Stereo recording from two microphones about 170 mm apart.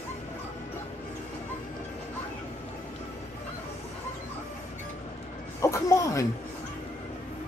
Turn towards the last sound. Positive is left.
turn(degrees=15)  # may be behind; listen again after turning